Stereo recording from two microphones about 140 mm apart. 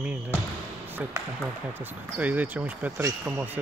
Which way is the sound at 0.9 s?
15° right (ahead or behind).